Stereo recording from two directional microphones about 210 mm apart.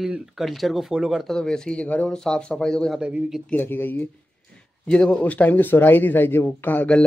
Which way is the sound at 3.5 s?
10° left (ahead or behind).